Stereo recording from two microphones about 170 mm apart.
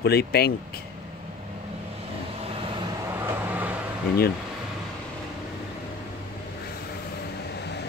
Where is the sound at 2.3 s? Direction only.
35° right (ahead or behind).